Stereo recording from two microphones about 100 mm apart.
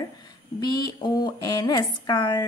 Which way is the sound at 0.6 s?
45° left (ahead or behind).